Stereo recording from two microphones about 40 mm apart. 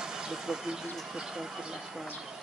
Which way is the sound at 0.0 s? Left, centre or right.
Centre.